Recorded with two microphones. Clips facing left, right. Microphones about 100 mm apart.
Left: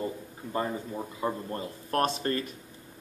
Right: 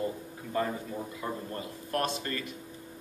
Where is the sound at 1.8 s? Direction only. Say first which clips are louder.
Left 5 dB; 40° left (ahead or behind).